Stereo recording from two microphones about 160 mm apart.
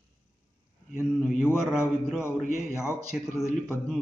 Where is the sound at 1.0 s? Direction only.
15° left (ahead or behind).